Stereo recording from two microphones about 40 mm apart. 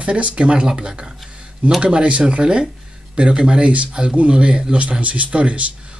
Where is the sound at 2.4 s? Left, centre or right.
Right.